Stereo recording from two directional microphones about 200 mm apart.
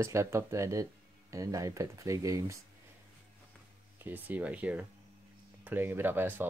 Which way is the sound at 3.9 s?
10° right (ahead or behind).